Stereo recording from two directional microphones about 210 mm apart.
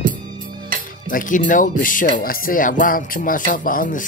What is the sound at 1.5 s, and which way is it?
Music, 40° left (ahead or behind).